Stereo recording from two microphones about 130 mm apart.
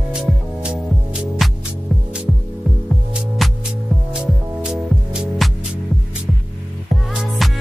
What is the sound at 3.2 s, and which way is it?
Music, centre (ahead or behind).